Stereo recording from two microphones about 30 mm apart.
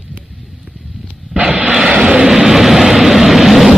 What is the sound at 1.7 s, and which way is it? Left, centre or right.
Vehicle, right.